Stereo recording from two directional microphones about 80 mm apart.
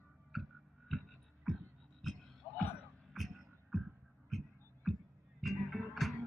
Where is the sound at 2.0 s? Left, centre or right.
Centre.